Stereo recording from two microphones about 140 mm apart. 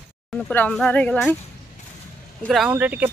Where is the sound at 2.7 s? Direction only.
10° right (ahead or behind).